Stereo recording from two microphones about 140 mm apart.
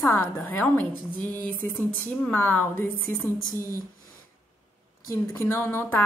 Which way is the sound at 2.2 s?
10° left (ahead or behind).